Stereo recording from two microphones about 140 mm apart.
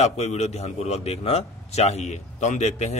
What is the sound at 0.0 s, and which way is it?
A man's voice, 50° left (ahead or behind).